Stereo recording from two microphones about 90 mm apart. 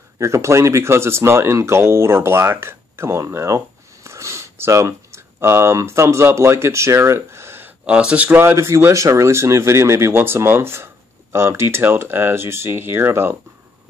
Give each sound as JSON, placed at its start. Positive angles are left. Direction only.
{"t": 0.2, "sound": "speech", "side_deg": -35}
{"t": 7.8, "sound": "speech", "side_deg": -10}